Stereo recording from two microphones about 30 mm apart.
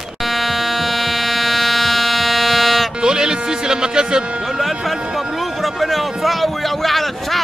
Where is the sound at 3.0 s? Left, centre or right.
Right.